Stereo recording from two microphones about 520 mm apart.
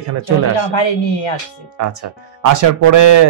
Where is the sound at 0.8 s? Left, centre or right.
Left.